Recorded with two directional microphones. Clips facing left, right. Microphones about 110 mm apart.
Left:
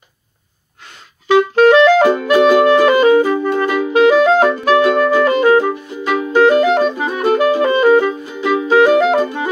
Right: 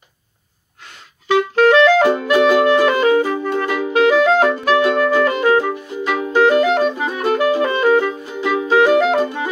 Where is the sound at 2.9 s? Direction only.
20° left (ahead or behind).